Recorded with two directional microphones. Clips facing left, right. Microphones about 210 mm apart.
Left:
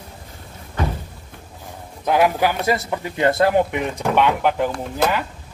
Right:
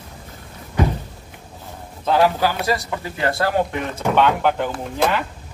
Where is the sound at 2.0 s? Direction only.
15° left (ahead or behind).